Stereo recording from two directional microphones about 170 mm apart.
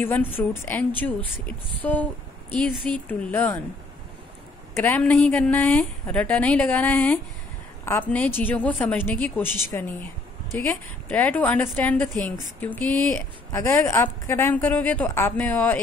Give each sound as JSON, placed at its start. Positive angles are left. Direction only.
{"t": 0.0, "sound": "a woman's voice", "side_deg": 10}
{"t": 4.7, "sound": "a woman's voice", "side_deg": 10}
{"t": 11.1, "sound": "a woman's voice", "side_deg": 10}